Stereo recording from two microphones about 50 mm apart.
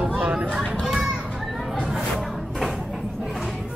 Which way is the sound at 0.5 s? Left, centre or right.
Centre.